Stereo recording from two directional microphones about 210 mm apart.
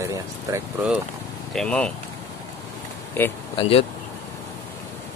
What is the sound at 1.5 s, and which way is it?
Speech, 5° left (ahead or behind).